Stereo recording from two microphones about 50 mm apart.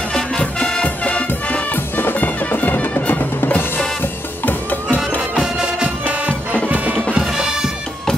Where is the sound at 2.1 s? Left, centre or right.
Left.